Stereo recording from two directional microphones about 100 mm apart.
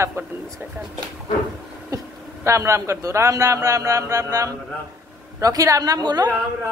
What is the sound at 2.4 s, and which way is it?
A man's voice, 30° right (ahead or behind).